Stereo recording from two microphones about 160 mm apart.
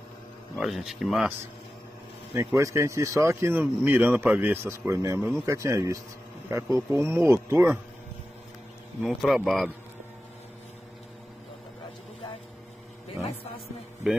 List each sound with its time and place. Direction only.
0.6 s speech: centre (ahead or behind)
2.3 s a man's voice: 20° right (ahead or behind)
9.0 s speech: centre (ahead or behind)